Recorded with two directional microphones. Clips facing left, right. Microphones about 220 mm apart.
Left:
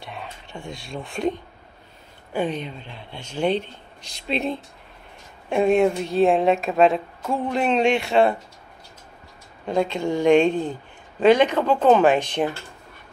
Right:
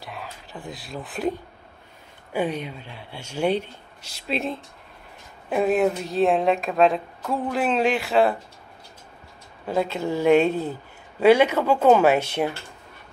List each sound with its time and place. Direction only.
0.0 s a sound: centre (ahead or behind)
2.3 s a woman's voice: 10° right (ahead or behind)
9.7 s speech: 5° right (ahead or behind)